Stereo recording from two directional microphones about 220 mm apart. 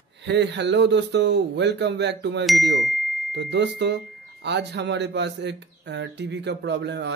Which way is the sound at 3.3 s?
50° right (ahead or behind).